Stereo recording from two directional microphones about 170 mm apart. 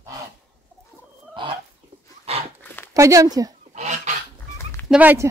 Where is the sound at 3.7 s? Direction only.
45° right (ahead or behind).